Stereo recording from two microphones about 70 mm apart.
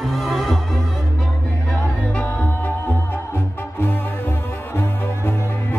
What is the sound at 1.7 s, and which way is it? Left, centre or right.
Music, left.